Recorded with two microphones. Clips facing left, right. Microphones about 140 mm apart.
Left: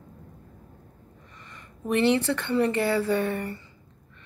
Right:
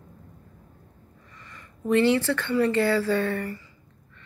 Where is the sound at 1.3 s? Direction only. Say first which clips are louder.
Right 1 dB; 20° left (ahead or behind).